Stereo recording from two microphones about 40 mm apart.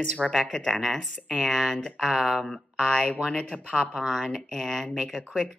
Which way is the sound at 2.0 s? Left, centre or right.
Centre.